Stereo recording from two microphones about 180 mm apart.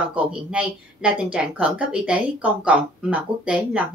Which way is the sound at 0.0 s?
5° right (ahead or behind).